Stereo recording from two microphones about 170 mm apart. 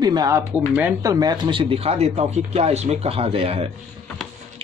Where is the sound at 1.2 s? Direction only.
25° right (ahead or behind).